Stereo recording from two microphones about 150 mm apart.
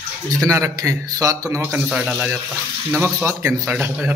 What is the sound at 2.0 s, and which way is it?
Speech, 5° right (ahead or behind).